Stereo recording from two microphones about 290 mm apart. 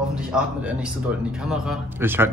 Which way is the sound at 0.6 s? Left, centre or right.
Centre.